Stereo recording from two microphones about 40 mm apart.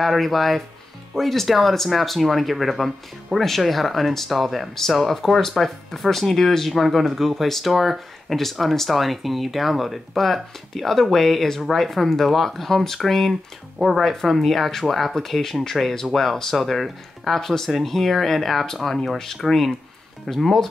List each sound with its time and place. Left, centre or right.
0.0 s speech: centre
13.3 s speech: centre
14.0 s speech: centre